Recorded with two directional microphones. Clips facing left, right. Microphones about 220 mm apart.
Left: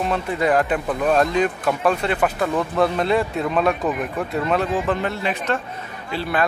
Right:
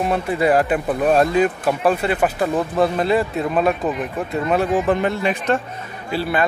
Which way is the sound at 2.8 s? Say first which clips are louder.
Right 1 dB; centre (ahead or behind).